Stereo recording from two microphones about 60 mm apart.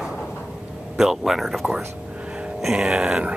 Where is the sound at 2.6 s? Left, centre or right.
Centre.